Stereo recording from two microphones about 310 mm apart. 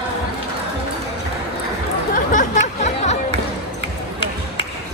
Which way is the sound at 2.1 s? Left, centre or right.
Left.